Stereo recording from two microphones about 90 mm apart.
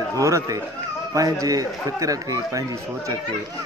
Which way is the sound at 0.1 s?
35° right (ahead or behind).